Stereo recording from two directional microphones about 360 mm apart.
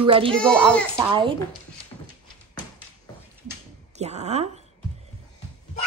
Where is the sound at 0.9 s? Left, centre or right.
Centre.